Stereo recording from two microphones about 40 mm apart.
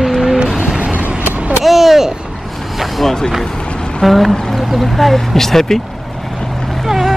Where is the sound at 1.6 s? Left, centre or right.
Centre.